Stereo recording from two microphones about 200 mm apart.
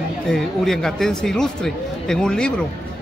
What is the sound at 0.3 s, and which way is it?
Speech, centre (ahead or behind).